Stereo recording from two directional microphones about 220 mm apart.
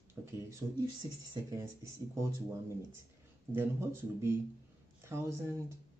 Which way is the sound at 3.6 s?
10° right (ahead or behind).